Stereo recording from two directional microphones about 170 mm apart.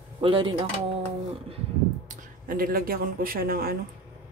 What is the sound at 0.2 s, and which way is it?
Speech, 30° right (ahead or behind).